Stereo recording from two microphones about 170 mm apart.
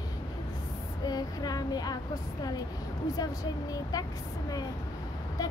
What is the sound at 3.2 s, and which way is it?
Speech, 20° left (ahead or behind).